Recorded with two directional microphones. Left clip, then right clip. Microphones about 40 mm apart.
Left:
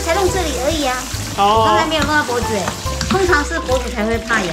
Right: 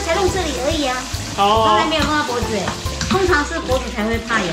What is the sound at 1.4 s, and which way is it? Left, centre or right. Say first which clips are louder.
Speech: left 1 dB; left.